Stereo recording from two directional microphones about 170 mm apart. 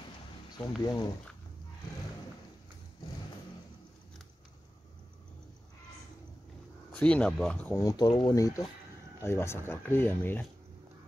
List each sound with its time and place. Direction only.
0.5 s speech: 25° left (ahead or behind)
7.0 s speech: 5° left (ahead or behind)
7.7 s speech: 20° left (ahead or behind)